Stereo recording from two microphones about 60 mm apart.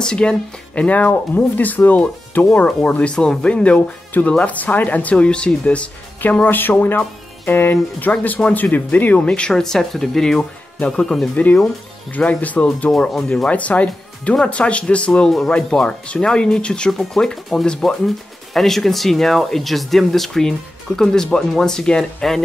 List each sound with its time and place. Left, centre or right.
0.0 s speech: centre
6.4 s speech: left
8.1 s speech: left
9.5 s speech: centre
12.1 s speech: left
13.1 s speech: centre
13.5 s speech: left